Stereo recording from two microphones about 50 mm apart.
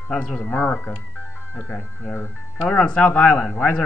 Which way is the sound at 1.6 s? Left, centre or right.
Left.